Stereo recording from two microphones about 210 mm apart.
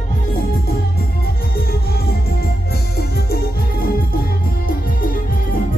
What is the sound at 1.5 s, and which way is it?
Music, 45° left (ahead or behind).